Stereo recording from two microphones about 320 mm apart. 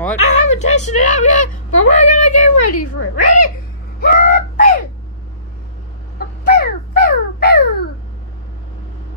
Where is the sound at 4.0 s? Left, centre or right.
Left.